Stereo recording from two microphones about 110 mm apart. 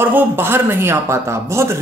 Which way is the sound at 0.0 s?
20° right (ahead or behind).